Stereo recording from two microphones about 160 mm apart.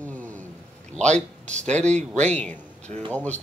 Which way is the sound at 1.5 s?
45° right (ahead or behind).